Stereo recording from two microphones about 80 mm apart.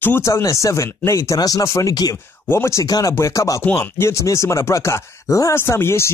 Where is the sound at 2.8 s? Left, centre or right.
Left.